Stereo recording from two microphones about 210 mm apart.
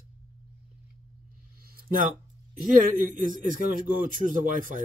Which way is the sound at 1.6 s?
45° right (ahead or behind).